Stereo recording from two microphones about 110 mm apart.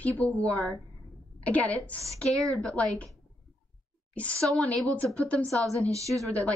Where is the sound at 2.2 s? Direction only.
Centre (ahead or behind).